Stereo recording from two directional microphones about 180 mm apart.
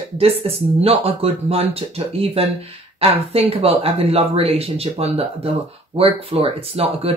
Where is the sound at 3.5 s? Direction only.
30° right (ahead or behind).